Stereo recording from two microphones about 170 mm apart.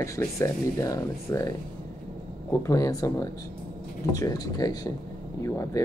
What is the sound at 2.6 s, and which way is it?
Speech, 20° left (ahead or behind).